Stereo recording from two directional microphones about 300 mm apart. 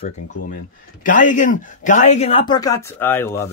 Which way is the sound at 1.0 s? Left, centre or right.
Left.